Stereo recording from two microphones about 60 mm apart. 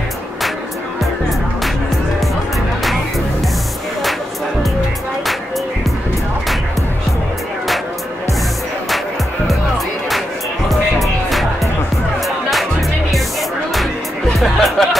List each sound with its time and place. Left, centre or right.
10.7 s music: centre
14.4 s music: centre